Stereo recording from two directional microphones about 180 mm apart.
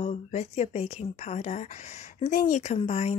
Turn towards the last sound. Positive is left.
turn(degrees=35)  # may be behind; listen again after turning